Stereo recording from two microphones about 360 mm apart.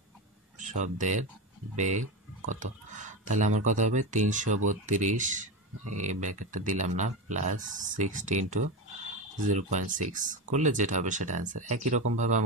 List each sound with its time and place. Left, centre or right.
0.6 s speech: right